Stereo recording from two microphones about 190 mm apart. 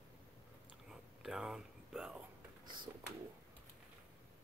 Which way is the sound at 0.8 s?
5° right (ahead or behind).